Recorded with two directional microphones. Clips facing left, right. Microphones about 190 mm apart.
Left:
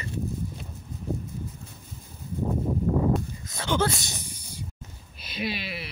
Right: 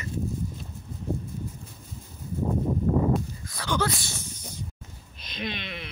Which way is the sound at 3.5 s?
25° left (ahead or behind).